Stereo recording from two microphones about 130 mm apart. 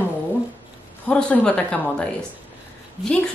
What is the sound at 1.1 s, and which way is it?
Speech, 10° left (ahead or behind).